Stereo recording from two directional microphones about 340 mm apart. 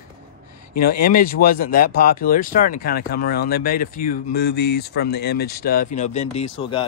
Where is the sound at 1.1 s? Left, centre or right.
Left.